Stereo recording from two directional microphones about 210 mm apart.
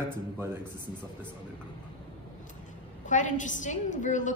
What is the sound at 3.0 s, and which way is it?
A woman's voice, 35° left (ahead or behind).